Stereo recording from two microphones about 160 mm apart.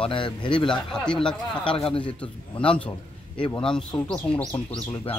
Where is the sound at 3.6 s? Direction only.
5° left (ahead or behind).